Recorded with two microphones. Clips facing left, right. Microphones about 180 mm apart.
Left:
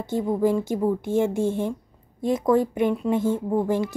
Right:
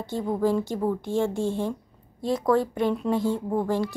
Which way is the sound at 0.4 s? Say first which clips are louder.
Left 1 dB; 20° left (ahead or behind).